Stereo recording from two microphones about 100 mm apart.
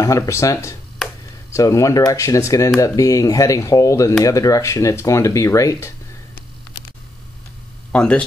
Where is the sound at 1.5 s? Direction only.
30° left (ahead or behind).